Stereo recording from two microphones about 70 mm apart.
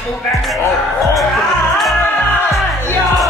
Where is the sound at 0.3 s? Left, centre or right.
Centre.